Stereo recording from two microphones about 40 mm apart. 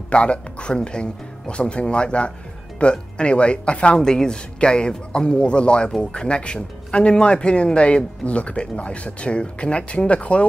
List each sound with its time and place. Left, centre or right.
0.1 s speech: left
4.0 s speech: centre